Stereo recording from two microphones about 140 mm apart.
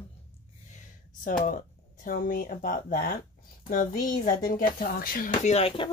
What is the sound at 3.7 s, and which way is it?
A woman's voice, 75° left (ahead or behind).